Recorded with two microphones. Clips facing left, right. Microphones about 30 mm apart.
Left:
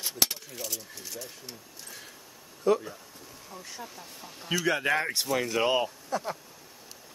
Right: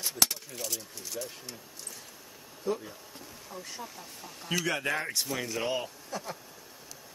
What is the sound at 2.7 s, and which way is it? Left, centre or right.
Speech, left.